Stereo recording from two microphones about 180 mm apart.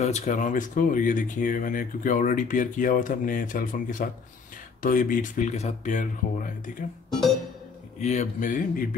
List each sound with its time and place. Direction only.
0.0 s speech: 40° left (ahead or behind)
8.0 s speech: 40° left (ahead or behind)